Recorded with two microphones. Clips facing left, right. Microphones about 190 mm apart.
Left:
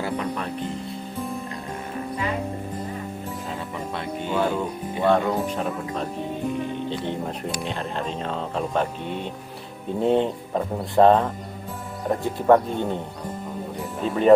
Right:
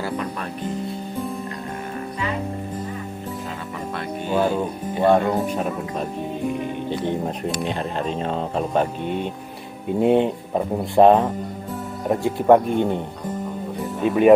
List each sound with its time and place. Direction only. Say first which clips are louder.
4.3 s music: right 3 dB; 15° right (ahead or behind)
5.0 s speech: right 3 dB; 15° right (ahead or behind)
7.6 s speech: right 4 dB; 10° right (ahead or behind)
9.9 s speech: right 3 dB; 15° right (ahead or behind)
12.4 s speech: right 3 dB; 15° right (ahead or behind)
14.0 s speech: right 5 dB; 15° right (ahead or behind)